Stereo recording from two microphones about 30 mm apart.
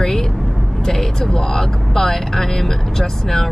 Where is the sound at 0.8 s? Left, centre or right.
Centre.